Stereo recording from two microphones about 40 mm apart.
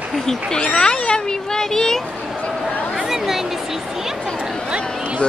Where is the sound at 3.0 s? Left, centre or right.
Centre.